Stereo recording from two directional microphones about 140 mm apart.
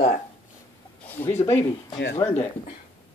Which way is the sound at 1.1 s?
15° left (ahead or behind).